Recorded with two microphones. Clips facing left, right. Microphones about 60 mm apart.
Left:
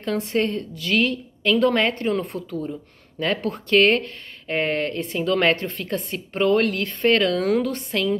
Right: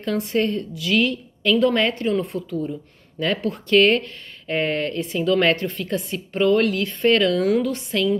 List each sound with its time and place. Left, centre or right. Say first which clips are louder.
0.0 s speech: right 1 dB; left
5.8 s a woman's voice: right 2 dB; left